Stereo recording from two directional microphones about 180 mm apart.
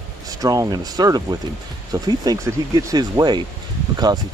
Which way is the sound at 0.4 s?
20° right (ahead or behind).